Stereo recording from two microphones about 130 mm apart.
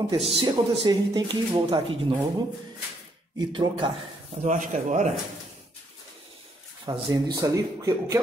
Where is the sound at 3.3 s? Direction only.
40° right (ahead or behind).